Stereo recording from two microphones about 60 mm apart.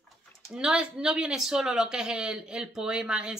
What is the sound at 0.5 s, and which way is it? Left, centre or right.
A woman's voice, centre.